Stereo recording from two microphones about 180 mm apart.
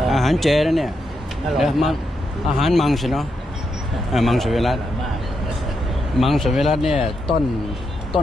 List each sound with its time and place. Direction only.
0.0 s a man's voice: centre (ahead or behind)
6.1 s a man's voice: centre (ahead or behind)
6.9 s speech: 30° left (ahead or behind)